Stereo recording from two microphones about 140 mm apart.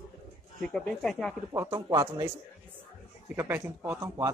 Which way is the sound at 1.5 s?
20° right (ahead or behind).